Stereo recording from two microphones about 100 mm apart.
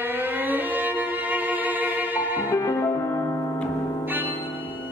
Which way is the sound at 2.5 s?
25° left (ahead or behind).